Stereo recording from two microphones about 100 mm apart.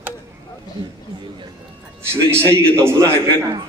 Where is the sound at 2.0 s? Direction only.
25° right (ahead or behind).